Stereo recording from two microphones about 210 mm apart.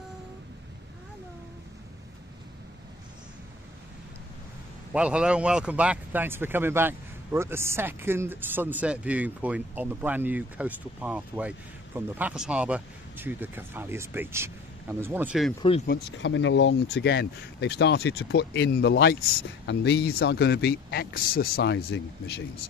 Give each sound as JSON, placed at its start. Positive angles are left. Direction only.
{"t": 4.9, "sound": "speech", "side_deg": -5}
{"t": 15.9, "sound": "speech", "side_deg": 55}
{"t": 21.7, "sound": "speech", "side_deg": 65}